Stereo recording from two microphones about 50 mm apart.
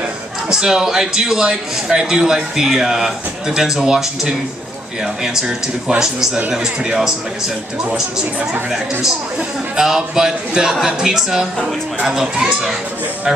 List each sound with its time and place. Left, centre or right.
0.5 s a man's voice: centre
9.8 s a man's voice: centre